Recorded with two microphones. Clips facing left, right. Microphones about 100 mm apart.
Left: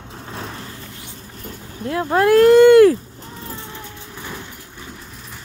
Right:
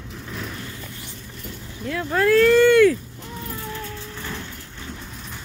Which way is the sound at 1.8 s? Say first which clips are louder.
Left 4 dB; 35° left (ahead or behind).